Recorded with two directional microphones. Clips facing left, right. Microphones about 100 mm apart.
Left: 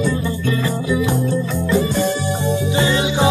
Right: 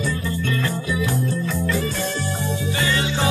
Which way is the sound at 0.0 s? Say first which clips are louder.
Left 5 dB; 15° left (ahead or behind).